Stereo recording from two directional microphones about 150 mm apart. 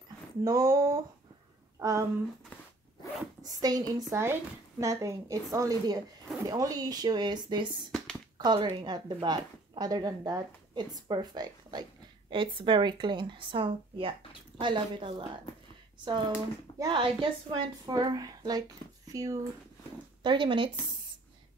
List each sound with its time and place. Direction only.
0.4 s a woman's voice: 25° right (ahead or behind)
3.4 s a woman's voice: 25° right (ahead or behind)
16.7 s speech: 25° right (ahead or behind)
17.0 s a woman's voice: 35° right (ahead or behind)
20.2 s speech: 30° right (ahead or behind)